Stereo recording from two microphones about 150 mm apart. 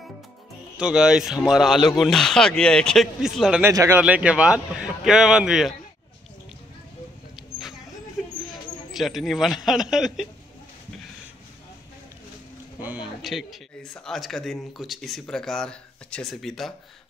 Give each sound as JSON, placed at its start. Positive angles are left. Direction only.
{"t": 0.7, "sound": "speech", "side_deg": -5}
{"t": 3.6, "sound": "speech", "side_deg": -15}
{"t": 8.2, "sound": "a sound", "side_deg": 0}
{"t": 8.9, "sound": "speech", "side_deg": 0}
{"t": 12.8, "sound": "speech", "side_deg": -10}